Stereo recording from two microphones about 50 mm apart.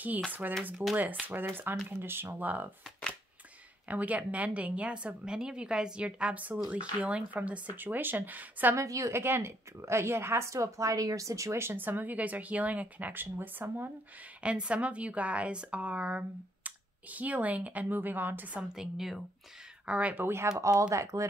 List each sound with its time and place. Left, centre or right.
0.3 s speech: right
2.2 s speech: right
3.9 s a woman's voice: right
7.7 s speech: right
8.7 s speech: right
9.1 s speech: right
11.7 s speech: right
13.1 s speech: right
14.4 s a woman's voice: right
18.6 s a woman's voice: centre
19.9 s speech: right
20.2 s speech: right